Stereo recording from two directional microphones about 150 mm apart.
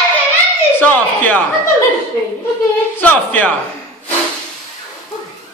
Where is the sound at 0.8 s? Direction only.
10° left (ahead or behind).